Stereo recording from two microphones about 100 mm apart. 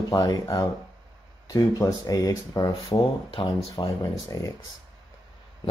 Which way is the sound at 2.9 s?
60° left (ahead or behind).